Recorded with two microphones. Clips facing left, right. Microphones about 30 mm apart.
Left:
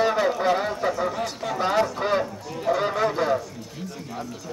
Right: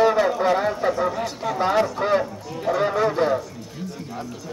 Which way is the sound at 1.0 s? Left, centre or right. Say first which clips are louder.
Right 3 dB; centre.